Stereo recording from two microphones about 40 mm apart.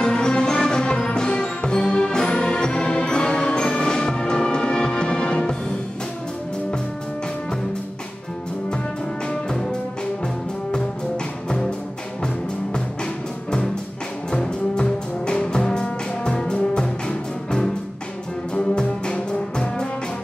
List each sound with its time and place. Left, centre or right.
0.0 s music: left
9.5 s music: centre
11.4 s music: centre
12.7 s music: left
18.5 s music: left